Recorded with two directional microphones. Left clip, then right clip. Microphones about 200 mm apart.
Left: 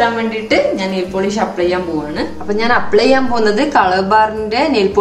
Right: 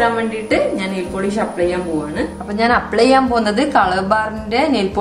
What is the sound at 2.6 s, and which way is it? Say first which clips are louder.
A woman's voice: left 1 dB; 30° right (ahead or behind).